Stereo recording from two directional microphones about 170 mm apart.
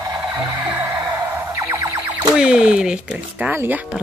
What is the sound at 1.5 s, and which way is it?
Music, 15° right (ahead or behind).